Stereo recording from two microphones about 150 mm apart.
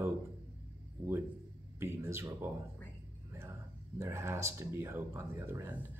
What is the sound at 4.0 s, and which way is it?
Speech, 20° right (ahead or behind).